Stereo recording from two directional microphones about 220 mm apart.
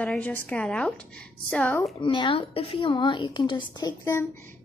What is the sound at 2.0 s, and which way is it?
A woman's voice, 20° left (ahead or behind).